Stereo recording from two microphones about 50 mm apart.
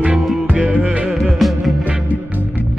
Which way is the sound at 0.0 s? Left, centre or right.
Right.